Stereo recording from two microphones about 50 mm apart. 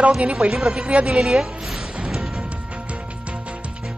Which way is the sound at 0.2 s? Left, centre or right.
Right.